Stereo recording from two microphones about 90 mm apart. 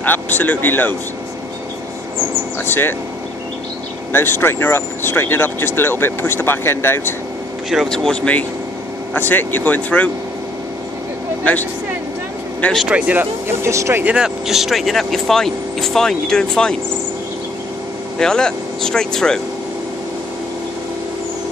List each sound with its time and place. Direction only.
0.0 s speech: 20° left (ahead or behind)
2.6 s speech: 25° left (ahead or behind)
4.1 s speech: 25° left (ahead or behind)
7.9 s speech: 10° left (ahead or behind)
12.7 s speech: 10° right (ahead or behind); by 14.0 s 30° right (ahead or behind)
14.0 s speech: 10° right (ahead or behind); by 16.7 s 10° left (ahead or behind)
18.2 s speech: 5° left (ahead or behind)